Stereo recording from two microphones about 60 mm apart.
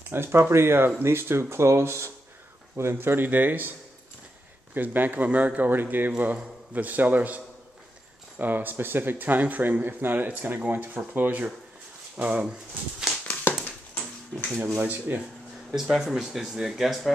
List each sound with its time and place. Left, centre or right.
0.1 s speech: right
2.7 s speech: right
4.7 s speech: right
13.5 s a sound: left
14.8 s speech: right
15.7 s speech: centre